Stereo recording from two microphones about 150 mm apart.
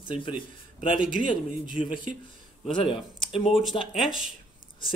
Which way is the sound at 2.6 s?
35° left (ahead or behind).